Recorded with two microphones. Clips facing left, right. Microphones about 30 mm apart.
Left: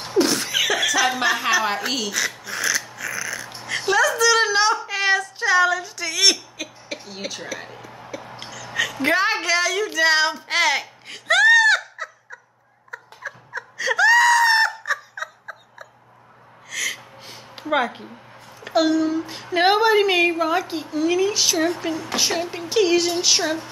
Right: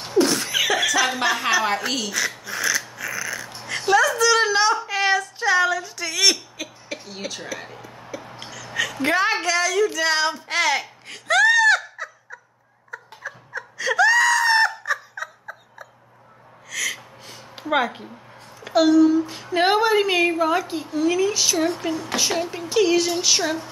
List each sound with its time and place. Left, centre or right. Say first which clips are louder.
0.1 s snicker: even; centre
3.6 s speech: right 1 dB; centre
4.7 s a sound: even; centre
8.6 s a woman's voice: left 1 dB; centre
12.9 s screaming: even; centre
16.7 s gasp: even; centre
17.2 s a sound: left 1 dB; centre
17.6 s speech: even; centre
18.6 s a sound: right 1 dB; centre
19.3 s a woman's voice: left 1 dB; centre
22.8 s a woman's voice: even; centre